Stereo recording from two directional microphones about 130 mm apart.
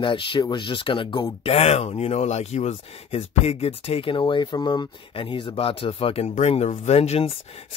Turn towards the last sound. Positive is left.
turn(degrees=50)  # may be behind; listen again after turning